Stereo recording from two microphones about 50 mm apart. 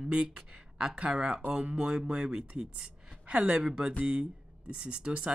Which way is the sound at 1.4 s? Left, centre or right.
Right.